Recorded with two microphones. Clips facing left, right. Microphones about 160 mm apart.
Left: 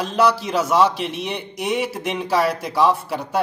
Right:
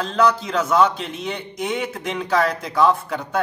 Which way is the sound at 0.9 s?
70° left (ahead or behind).